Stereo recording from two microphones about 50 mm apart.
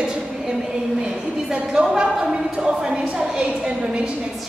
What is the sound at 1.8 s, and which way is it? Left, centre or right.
A woman's voice, centre.